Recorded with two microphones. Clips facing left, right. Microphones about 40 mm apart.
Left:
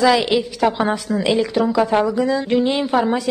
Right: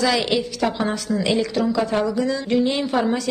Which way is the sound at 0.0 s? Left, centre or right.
Centre.